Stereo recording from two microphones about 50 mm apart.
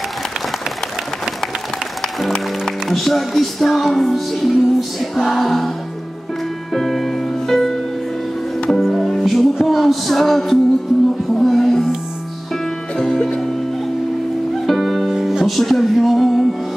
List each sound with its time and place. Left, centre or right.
2.0 s speech: centre
4.5 s music: centre
6.7 s music: centre
11.3 s speech: centre
12.9 s music: centre
14.5 s music: centre